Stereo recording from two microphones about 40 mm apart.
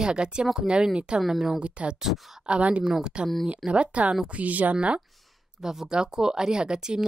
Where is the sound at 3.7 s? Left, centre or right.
Right.